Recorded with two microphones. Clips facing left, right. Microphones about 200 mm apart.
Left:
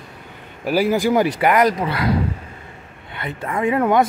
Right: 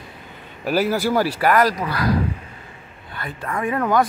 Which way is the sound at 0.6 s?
10° left (ahead or behind).